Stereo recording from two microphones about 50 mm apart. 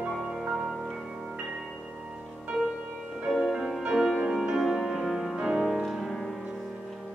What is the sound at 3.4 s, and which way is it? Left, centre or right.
Music, centre.